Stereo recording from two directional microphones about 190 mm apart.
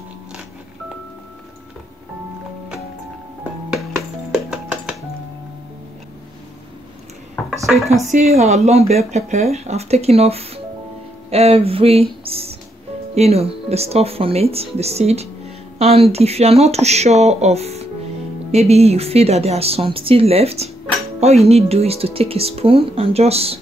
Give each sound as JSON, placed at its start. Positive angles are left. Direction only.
{"t": 3.7, "sound": "music", "side_deg": 0}
{"t": 7.6, "sound": "dishes", "side_deg": 0}
{"t": 8.0, "sound": "speech", "side_deg": -40}